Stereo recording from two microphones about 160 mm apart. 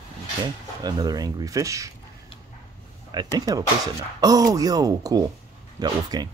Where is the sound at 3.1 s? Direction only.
25° right (ahead or behind).